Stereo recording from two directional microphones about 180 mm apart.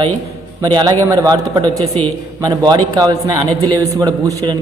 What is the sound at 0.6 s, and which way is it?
Speech, 25° right (ahead or behind).